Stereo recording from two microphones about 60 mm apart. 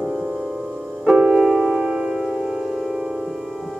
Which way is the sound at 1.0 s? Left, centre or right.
Centre.